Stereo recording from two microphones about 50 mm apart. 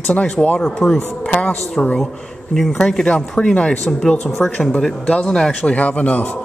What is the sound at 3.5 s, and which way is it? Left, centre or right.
A man's voice, left.